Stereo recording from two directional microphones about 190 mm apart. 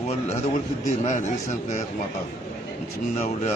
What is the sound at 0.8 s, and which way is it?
Speech, 40° left (ahead or behind).